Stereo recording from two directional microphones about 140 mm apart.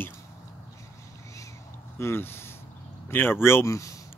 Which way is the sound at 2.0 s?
15° left (ahead or behind).